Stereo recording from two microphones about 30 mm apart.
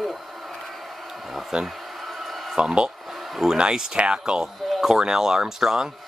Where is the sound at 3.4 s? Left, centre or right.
Centre.